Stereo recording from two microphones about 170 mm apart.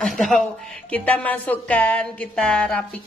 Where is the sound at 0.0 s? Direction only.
Centre (ahead or behind).